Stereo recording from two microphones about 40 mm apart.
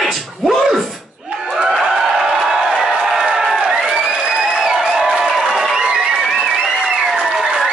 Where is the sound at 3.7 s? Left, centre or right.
Centre.